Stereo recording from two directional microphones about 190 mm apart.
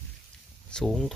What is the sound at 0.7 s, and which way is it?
Speech, 5° left (ahead or behind).